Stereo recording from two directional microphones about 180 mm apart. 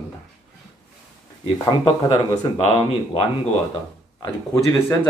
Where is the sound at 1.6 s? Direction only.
30° left (ahead or behind).